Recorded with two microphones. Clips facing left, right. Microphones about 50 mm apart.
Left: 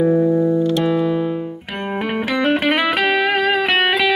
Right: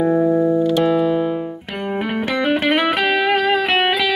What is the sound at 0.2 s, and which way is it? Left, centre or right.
Music, centre.